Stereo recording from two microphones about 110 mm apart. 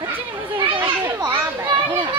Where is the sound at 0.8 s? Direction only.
20° right (ahead or behind).